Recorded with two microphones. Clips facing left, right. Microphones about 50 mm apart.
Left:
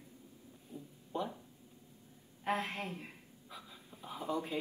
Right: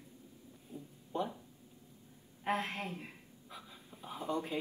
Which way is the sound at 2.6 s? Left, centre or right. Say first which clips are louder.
Even; right.